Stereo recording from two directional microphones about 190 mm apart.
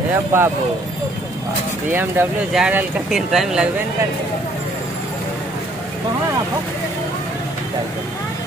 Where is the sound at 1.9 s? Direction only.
5° right (ahead or behind).